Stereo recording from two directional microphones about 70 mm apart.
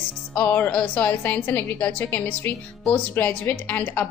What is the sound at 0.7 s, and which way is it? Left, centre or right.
Speech, centre.